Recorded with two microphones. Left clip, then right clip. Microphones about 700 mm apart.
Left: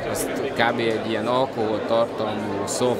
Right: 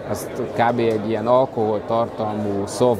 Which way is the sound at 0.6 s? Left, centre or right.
Right.